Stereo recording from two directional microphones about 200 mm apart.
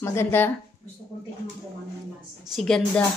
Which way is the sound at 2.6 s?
5° left (ahead or behind).